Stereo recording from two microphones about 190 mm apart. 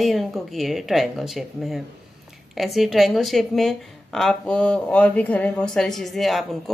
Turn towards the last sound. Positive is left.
turn(degrees=0)  # may be behind; listen again after turning